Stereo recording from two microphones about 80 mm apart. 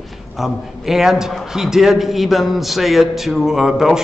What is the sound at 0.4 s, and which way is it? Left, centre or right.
A man's voice, centre.